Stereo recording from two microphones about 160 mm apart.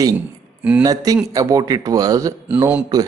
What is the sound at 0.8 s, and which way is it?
Speech, 20° right (ahead or behind).